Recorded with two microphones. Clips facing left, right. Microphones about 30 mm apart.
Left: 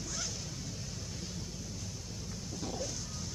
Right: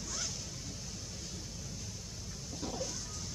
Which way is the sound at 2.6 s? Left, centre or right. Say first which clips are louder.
Even; centre.